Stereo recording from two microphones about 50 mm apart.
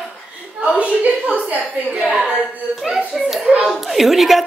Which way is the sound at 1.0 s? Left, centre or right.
Right.